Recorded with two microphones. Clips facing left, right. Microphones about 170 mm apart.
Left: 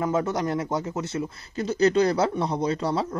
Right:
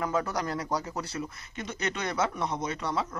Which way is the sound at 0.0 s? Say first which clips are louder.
Left 5 dB; 25° left (ahead or behind).